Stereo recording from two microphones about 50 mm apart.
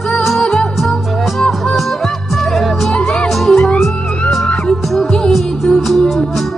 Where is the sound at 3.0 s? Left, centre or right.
Centre.